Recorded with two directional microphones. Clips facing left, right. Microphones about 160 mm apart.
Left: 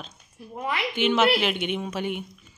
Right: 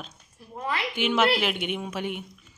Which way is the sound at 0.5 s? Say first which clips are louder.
Left 1 dB; 15° left (ahead or behind).